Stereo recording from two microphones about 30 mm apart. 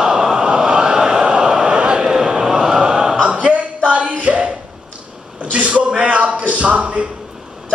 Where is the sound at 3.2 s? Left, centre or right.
Right.